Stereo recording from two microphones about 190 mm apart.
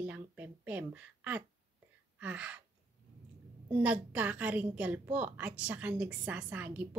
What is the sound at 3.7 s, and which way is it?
A woman's voice, 10° right (ahead or behind).